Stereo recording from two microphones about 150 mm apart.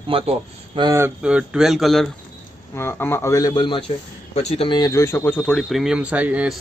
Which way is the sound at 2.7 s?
15° left (ahead or behind).